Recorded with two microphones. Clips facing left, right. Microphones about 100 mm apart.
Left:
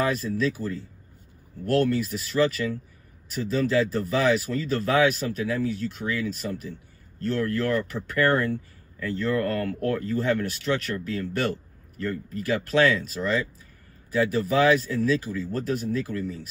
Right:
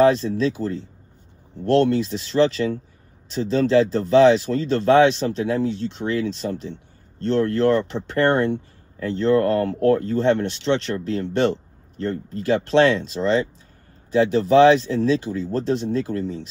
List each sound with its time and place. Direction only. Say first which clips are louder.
0.0 s speech: right 8 dB; 25° right (ahead or behind)